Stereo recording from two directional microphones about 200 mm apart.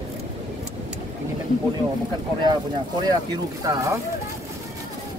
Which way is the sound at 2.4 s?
20° right (ahead or behind).